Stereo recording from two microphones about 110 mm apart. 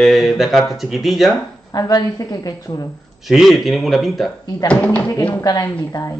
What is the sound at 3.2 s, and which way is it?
Speech, centre (ahead or behind).